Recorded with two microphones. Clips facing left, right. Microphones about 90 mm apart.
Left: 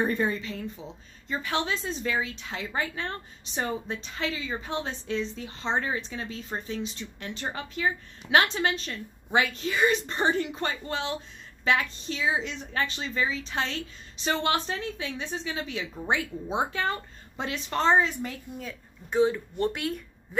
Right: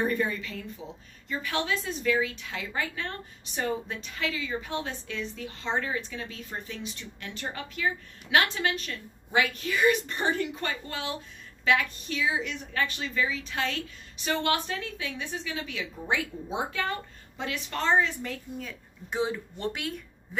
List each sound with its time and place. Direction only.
0.0 s a woman's voice: 30° left (ahead or behind)
18.6 s a woman's voice: 5° left (ahead or behind)
19.1 s speech: 5° right (ahead or behind)